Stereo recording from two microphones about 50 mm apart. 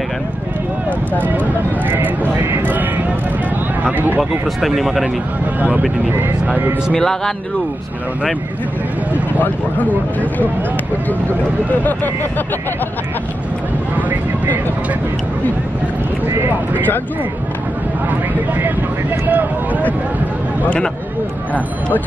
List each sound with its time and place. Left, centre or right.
1.2 s speech: right
4.6 s speech: centre
5.6 s speech: right
7.0 s speech: centre
9.4 s speech: left
11.7 s speech: left
13.9 s vehicle: right
18.5 s speech: right